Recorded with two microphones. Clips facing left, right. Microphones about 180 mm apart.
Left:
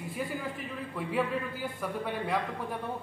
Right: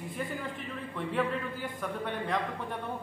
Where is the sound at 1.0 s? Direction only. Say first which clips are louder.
Even; 5° left (ahead or behind).